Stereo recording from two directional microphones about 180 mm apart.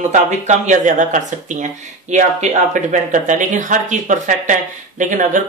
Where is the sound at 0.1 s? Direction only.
40° right (ahead or behind).